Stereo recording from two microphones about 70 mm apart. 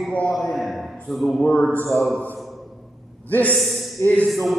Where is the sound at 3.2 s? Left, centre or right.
Left.